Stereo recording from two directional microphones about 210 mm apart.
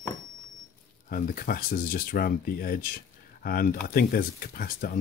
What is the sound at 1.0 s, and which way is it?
Speech, 40° left (ahead or behind).